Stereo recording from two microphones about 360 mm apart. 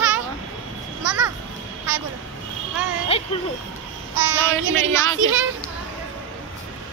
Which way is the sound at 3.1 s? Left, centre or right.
Centre.